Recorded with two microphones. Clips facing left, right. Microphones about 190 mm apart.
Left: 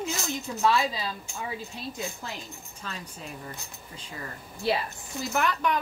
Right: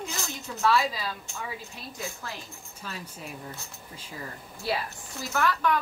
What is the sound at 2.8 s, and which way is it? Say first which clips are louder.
Speech: even; 5° right (ahead or behind).